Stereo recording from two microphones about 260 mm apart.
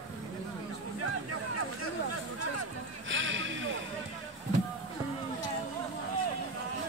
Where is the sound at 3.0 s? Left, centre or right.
Right.